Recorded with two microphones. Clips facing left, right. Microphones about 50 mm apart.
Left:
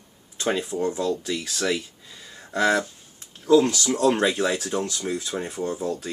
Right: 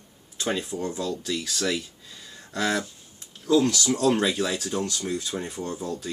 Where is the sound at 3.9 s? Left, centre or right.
Centre.